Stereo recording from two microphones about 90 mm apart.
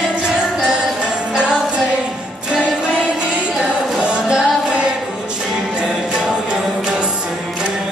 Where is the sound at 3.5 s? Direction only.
10° right (ahead or behind).